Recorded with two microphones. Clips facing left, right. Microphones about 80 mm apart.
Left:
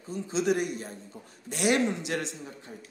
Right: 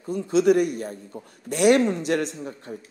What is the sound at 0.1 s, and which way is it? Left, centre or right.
A man's voice, right.